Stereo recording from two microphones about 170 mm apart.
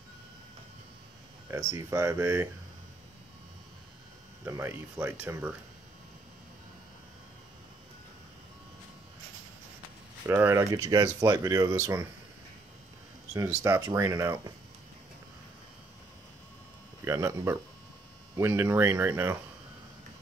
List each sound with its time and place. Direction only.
1.5 s speech: 15° right (ahead or behind)
4.5 s speech: 15° right (ahead or behind)
10.2 s speech: 10° right (ahead or behind)
13.3 s speech: 20° right (ahead or behind)
17.0 s speech: 15° right (ahead or behind)